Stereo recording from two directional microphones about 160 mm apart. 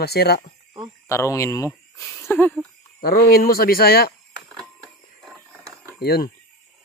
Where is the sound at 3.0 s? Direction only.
70° left (ahead or behind).